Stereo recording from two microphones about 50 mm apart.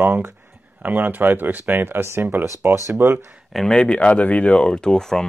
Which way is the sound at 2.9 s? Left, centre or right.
Right.